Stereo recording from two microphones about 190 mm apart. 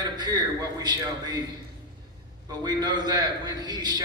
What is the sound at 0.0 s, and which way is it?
A man's voice, 20° right (ahead or behind).